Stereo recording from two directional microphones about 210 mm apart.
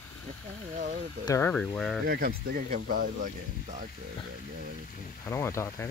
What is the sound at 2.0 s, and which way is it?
Speech, 45° right (ahead or behind).